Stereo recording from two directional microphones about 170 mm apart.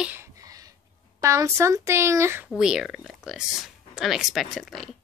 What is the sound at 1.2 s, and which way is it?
Speech, 15° right (ahead or behind).